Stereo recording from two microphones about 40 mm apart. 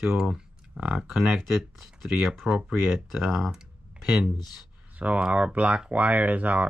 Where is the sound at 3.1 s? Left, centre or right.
Centre.